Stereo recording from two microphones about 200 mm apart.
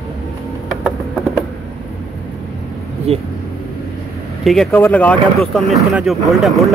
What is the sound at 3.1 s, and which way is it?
Speech, 30° right (ahead or behind).